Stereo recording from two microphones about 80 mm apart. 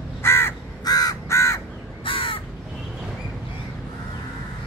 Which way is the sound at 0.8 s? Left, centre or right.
Left.